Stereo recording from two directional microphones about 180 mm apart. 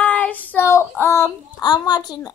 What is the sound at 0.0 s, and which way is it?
Child singing, 10° left (ahead or behind).